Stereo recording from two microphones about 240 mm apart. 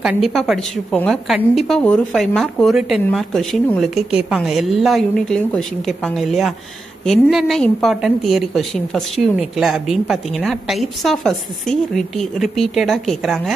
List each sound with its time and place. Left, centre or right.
0.3 s a woman's voice: centre